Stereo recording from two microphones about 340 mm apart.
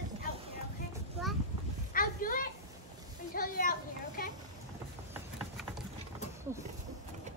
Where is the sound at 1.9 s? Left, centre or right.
Left.